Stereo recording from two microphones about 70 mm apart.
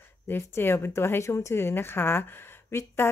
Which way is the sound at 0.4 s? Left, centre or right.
Left.